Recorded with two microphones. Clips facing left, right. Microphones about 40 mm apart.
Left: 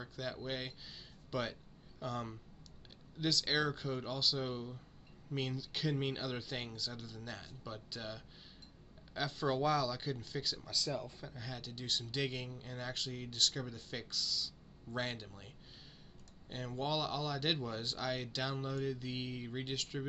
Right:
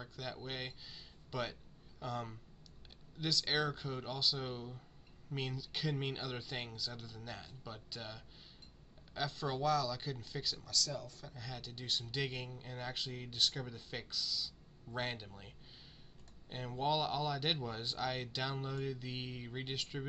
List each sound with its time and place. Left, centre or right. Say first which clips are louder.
0.0 s speech: left 3 dB; centre
10.6 s speech: left 1 dB; centre
11.2 s speech: left 1 dB; centre